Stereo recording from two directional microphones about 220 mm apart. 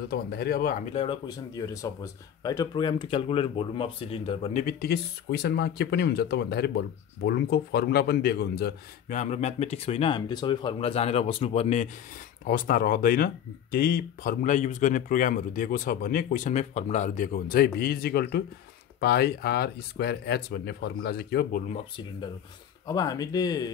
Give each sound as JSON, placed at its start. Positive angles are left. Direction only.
{"t": 0.1, "sound": "speech", "side_deg": 45}
{"t": 0.9, "sound": "speech", "side_deg": 25}
{"t": 4.6, "sound": "speech", "side_deg": 45}
{"t": 9.2, "sound": "speech", "side_deg": 30}
{"t": 22.8, "sound": "speech", "side_deg": 15}